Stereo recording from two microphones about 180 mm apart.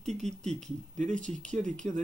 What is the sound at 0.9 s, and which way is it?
Speech, 45° right (ahead or behind).